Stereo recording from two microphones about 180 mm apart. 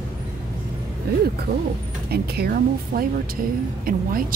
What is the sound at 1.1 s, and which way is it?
Speech, 65° right (ahead or behind).